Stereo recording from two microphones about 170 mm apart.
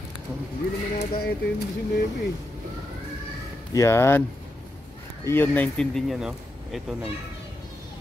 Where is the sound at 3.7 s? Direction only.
15° left (ahead or behind).